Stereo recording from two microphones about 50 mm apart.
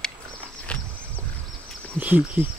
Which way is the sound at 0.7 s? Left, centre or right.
Left.